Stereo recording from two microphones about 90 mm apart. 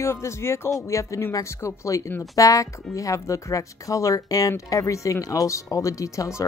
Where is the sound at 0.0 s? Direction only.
30° left (ahead or behind).